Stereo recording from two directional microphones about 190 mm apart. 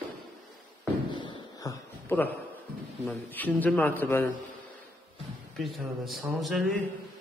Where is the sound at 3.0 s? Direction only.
10° left (ahead or behind).